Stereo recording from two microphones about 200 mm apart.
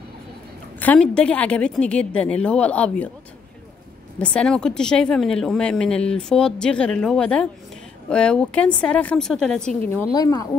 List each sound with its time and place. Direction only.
0.7 s speech: 5° left (ahead or behind)
4.2 s speech: 5° left (ahead or behind)
10.1 s speech: 20° left (ahead or behind)